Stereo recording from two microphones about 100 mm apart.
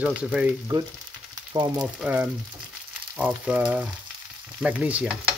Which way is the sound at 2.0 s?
15° right (ahead or behind).